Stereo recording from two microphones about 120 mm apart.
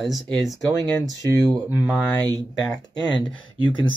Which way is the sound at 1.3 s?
25° left (ahead or behind).